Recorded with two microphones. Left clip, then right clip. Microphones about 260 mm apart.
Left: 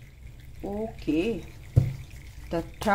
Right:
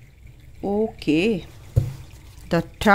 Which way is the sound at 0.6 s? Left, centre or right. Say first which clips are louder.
Right 9 dB; right.